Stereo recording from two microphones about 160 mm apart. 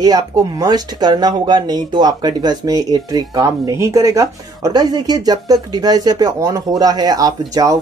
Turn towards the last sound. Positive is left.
turn(degrees=-20)  # may be behind; listen again after turning